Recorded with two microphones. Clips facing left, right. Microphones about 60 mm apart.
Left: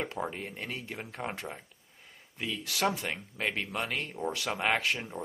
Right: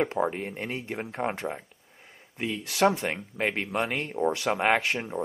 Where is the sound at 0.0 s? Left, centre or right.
Right.